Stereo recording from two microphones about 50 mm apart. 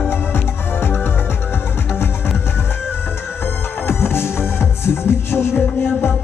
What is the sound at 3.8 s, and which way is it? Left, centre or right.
Music, left.